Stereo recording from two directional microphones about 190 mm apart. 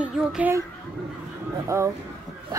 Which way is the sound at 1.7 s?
15° right (ahead or behind).